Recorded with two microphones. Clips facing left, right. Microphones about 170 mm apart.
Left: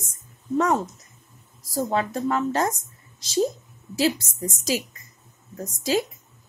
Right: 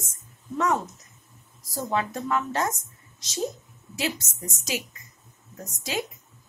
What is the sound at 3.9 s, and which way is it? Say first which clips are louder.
Speech: left 7 dB; 35° left (ahead or behind).